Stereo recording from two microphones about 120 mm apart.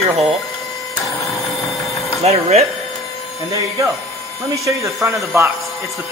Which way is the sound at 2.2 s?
60° right (ahead or behind).